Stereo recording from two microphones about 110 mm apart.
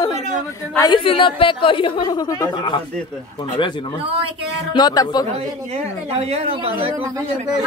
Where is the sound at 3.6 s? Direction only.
45° left (ahead or behind).